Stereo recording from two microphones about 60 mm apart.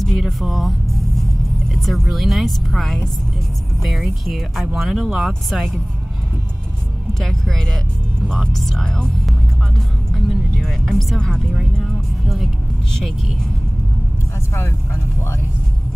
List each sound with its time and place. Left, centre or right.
0.0 s speech: centre
7.2 s speech: centre
9.8 s music: centre
11.5 s speech: centre